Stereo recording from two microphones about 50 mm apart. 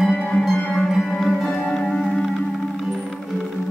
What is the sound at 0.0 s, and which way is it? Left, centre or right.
Music, centre.